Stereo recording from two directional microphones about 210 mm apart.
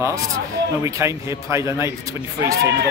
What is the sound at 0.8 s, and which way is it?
A man's voice, 15° right (ahead or behind).